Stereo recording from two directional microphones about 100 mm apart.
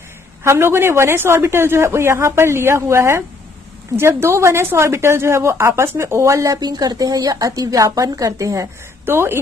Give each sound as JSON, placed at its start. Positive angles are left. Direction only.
{"t": 0.4, "sound": "speech", "side_deg": -25}
{"t": 6.6, "sound": "a woman's voice", "side_deg": -45}
{"t": 9.0, "sound": "speech", "side_deg": -25}